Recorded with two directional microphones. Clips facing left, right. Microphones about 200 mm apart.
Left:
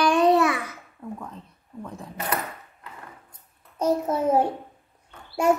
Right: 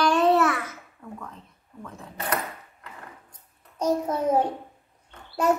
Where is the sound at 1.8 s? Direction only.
10° left (ahead or behind).